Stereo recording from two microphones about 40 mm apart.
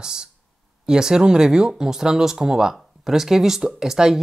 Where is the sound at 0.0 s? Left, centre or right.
Centre.